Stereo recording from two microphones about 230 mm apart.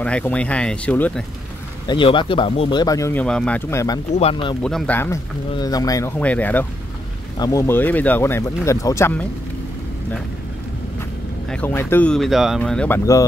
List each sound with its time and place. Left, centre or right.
0.0 s speech: centre
1.9 s speech: left
4.6 s speech: centre
11.4 s speech: centre